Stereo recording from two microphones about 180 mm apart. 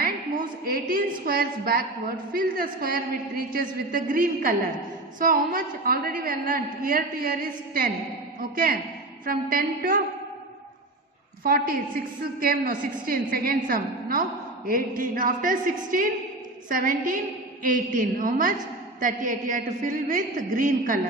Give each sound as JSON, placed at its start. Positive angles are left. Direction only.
{"t": 0.7, "sound": "a woman's voice", "side_deg": -50}
{"t": 11.4, "sound": "a woman's voice", "side_deg": -55}